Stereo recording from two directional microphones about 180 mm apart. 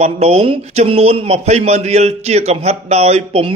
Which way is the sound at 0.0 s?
35° right (ahead or behind).